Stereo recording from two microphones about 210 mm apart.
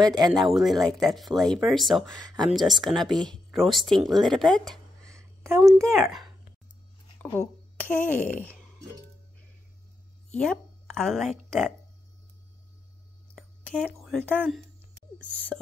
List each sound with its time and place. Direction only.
0.0 s speech: 20° right (ahead or behind)
0.3 s speech: centre (ahead or behind)
5.0 s a sound: 15° right (ahead or behind)
5.7 s speech: 10° right (ahead or behind)
8.1 s speech: 10° left (ahead or behind)
10.3 s a woman's voice: 5° left (ahead or behind)
13.3 s a sound: 5° left (ahead or behind)
14.0 s speech: 5° left (ahead or behind)